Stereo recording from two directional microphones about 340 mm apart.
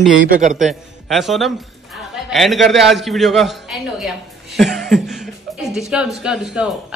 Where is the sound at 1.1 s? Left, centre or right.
Centre.